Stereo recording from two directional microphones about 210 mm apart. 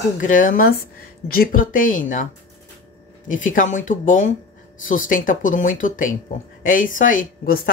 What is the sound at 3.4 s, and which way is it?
Speech, 40° left (ahead or behind).